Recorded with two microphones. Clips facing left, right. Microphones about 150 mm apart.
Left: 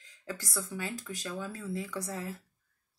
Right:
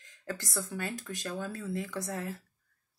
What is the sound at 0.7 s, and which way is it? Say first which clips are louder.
Speech: right 1 dB; 50° right (ahead or behind).